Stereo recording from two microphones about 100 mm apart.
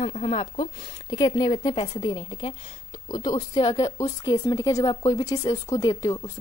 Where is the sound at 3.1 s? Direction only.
45° left (ahead or behind).